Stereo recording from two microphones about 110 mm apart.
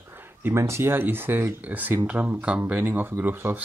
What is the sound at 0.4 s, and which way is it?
Speech, 20° right (ahead or behind).